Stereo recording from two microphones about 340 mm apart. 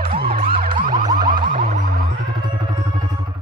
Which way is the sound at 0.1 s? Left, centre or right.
Centre.